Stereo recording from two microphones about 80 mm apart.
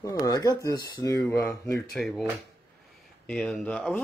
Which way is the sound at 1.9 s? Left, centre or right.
Centre.